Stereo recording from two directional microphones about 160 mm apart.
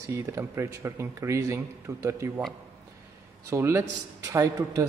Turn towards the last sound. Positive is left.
turn(degrees=-20)  # may be behind; listen again after turning